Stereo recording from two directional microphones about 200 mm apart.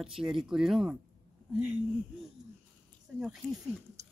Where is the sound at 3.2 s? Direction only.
Centre (ahead or behind).